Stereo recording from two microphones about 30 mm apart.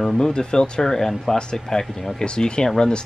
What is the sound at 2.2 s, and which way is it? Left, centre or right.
Speech, left.